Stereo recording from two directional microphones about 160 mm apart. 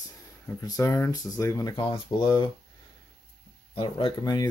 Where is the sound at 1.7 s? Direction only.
30° left (ahead or behind).